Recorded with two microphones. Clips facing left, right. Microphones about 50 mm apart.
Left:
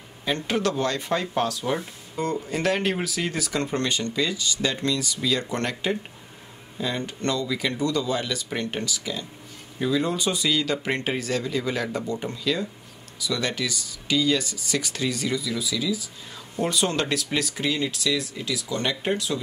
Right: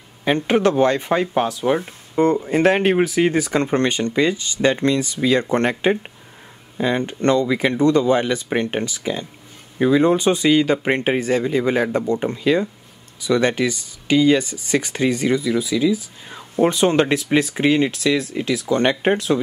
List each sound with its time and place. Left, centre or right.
0.2 s speech: right